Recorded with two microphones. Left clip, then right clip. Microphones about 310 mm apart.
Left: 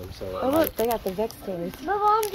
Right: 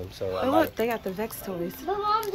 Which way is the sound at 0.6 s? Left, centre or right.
Centre.